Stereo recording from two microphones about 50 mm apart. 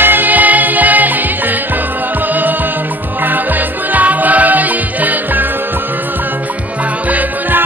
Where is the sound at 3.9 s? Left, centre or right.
Right.